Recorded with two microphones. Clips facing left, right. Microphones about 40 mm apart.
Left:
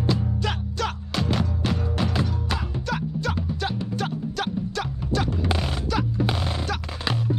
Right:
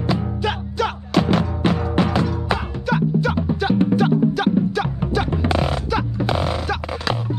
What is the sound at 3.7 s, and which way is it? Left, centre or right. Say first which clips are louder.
Music: right 13 dB; right.